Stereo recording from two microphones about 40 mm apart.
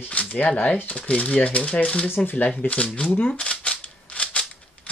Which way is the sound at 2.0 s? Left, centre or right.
Left.